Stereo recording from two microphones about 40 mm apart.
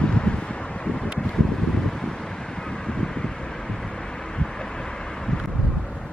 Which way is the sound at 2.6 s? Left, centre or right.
Centre.